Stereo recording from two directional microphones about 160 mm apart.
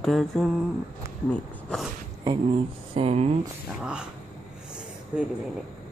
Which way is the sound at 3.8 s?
5° right (ahead or behind).